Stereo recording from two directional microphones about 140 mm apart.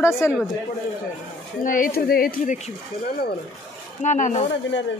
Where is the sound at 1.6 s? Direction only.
70° left (ahead or behind); by 2.5 s 90° left.